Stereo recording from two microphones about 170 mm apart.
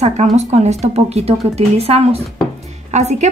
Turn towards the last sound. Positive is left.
turn(degrees=-40)  # may be behind; listen again after turning